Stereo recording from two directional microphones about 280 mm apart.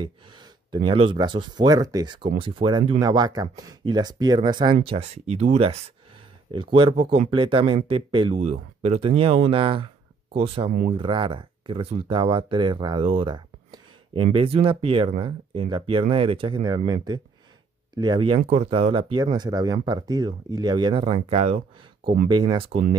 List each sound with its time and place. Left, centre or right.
0.0 s speech: centre
22.3 s speech: centre